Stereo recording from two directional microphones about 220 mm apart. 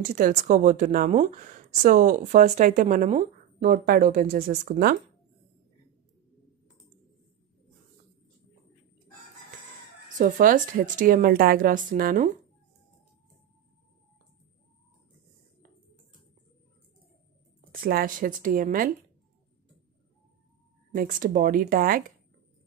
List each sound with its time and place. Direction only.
0.0 s speech: 40° right (ahead or behind)
10.0 s speech: 35° right (ahead or behind)
17.6 s speech: 40° right (ahead or behind)
20.9 s speech: 40° right (ahead or behind)